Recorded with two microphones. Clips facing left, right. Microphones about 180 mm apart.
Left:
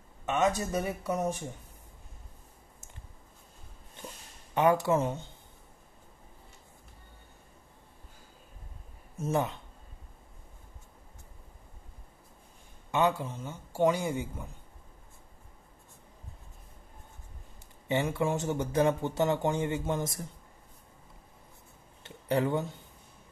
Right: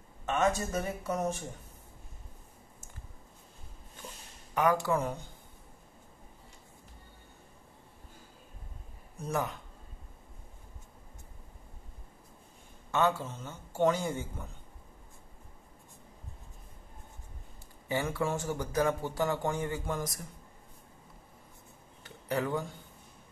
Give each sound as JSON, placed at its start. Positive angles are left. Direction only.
{"t": 0.3, "sound": "speech", "side_deg": 20}
{"t": 4.6, "sound": "speech", "side_deg": 25}
{"t": 9.1, "sound": "speech", "side_deg": 25}
{"t": 12.9, "sound": "speech", "side_deg": 15}
{"t": 17.8, "sound": "speech", "side_deg": 20}
{"t": 22.0, "sound": "speech", "side_deg": 25}